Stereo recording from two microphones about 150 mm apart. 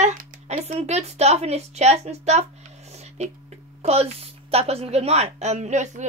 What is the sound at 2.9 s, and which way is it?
Music, 45° right (ahead or behind).